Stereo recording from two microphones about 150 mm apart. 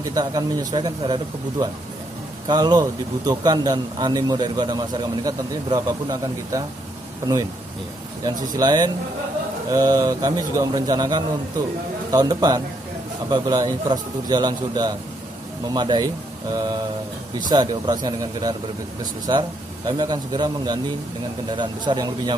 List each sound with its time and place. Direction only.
0.1 s speech: 25° right (ahead or behind)
8.2 s speech: 25° right (ahead or behind)
17.5 s speech: 30° right (ahead or behind)